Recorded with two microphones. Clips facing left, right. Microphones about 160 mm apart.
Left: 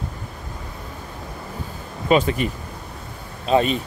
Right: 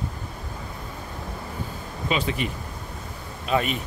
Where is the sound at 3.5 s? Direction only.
30° left (ahead or behind).